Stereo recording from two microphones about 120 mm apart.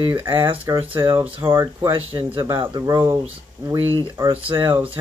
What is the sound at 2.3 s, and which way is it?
Speech, 40° right (ahead or behind).